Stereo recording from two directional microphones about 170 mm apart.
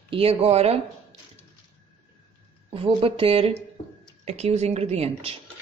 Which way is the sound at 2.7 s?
30° right (ahead or behind).